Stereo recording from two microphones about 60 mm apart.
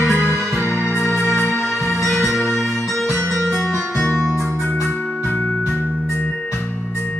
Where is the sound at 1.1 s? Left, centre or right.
Left.